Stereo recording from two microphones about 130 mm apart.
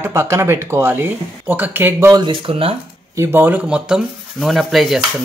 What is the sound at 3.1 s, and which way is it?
Speech, 20° right (ahead or behind).